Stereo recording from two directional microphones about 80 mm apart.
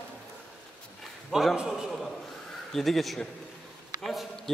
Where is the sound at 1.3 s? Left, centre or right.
Centre.